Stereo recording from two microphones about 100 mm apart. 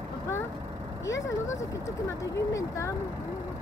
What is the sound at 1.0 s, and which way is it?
Speech, 30° left (ahead or behind).